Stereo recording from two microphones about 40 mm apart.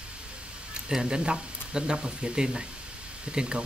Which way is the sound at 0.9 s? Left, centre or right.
Centre.